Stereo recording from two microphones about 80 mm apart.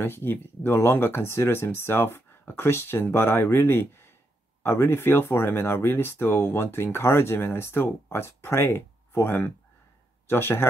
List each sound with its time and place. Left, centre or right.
0.0 s speech: left